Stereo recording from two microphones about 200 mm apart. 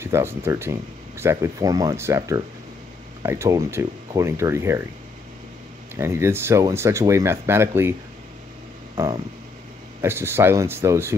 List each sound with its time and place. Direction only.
0.0 s speech: 10° right (ahead or behind)
5.9 s speech: 15° right (ahead or behind)
9.0 s speech: 15° right (ahead or behind)